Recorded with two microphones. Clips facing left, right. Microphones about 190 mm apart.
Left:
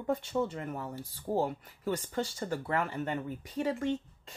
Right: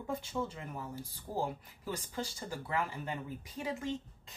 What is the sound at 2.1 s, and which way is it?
Speech, 60° left (ahead or behind).